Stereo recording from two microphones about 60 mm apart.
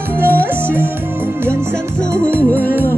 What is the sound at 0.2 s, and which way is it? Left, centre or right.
Music, left.